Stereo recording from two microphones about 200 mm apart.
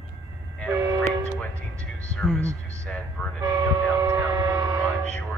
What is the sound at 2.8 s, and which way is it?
Speech, 5° left (ahead or behind).